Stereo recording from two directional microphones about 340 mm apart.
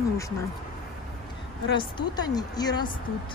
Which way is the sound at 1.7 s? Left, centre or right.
Centre.